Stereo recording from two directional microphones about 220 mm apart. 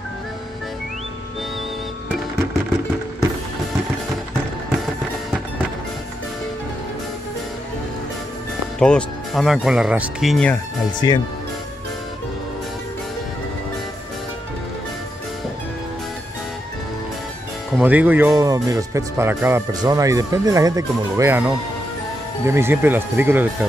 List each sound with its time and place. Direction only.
8.7 s speech: 5° left (ahead or behind)
11.0 s speech: 20° left (ahead or behind)
17.7 s speech: 5° right (ahead or behind)